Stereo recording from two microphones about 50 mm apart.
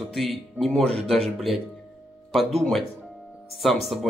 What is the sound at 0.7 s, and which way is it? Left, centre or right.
Speech, centre.